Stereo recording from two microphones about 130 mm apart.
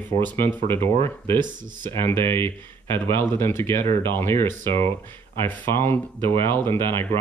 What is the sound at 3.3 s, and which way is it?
Speech, 20° left (ahead or behind).